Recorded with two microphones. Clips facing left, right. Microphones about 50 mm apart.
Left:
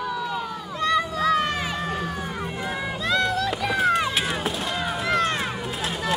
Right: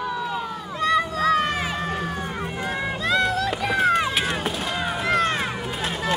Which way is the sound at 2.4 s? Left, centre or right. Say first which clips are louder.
Right 2 dB; centre.